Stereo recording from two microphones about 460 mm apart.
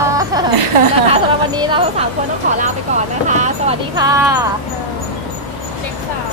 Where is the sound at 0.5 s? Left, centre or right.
Right.